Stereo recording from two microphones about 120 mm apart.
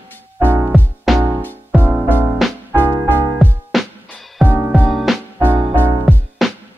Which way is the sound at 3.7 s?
Centre (ahead or behind).